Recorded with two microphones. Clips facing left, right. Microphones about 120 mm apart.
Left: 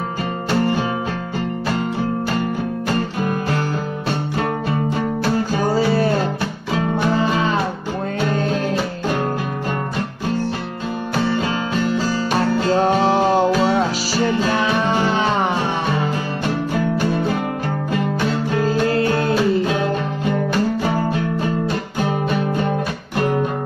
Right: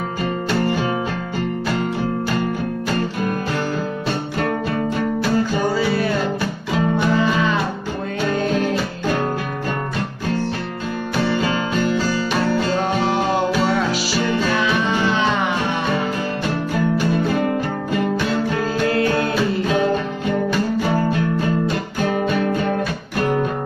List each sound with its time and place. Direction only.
5.7 s music: 35° left (ahead or behind)
7.2 s music: 35° left (ahead or behind)
12.8 s music: 35° left (ahead or behind)
18.9 s music: 30° left (ahead or behind)